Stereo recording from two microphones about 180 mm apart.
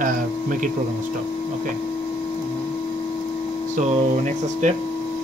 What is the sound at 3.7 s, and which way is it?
Speech, 40° right (ahead or behind).